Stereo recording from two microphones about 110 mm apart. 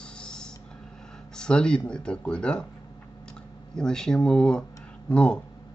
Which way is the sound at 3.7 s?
5° left (ahead or behind).